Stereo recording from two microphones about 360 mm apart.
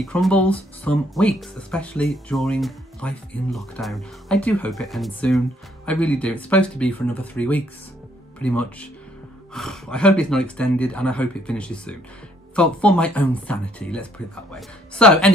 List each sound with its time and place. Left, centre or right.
0.0 s speech: centre